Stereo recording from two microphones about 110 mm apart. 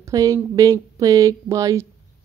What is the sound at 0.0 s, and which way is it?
Speech, 30° right (ahead or behind).